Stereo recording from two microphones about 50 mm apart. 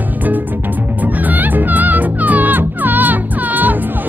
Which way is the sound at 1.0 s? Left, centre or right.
Right.